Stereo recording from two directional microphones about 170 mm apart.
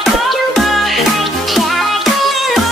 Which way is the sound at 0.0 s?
Centre (ahead or behind).